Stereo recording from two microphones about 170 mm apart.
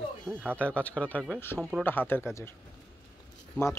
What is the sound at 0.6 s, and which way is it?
Speech, 10° left (ahead or behind).